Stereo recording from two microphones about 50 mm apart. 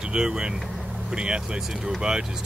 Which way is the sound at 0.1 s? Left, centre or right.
Centre.